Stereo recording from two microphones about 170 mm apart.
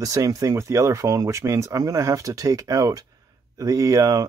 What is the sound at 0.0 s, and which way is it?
Speech, 20° right (ahead or behind).